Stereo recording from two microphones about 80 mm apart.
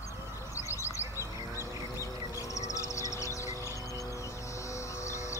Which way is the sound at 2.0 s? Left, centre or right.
Left.